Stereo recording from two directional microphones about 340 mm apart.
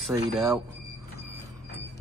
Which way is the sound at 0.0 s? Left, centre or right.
Centre.